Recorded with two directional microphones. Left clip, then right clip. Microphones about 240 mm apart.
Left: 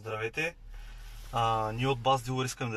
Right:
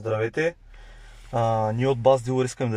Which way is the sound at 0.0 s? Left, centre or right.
Right.